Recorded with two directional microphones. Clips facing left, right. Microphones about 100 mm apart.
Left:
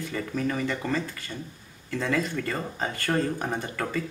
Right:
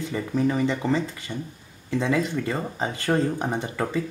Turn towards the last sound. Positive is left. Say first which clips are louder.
# right 3 dB
turn(degrees=-15)  # may be behind; listen again after turning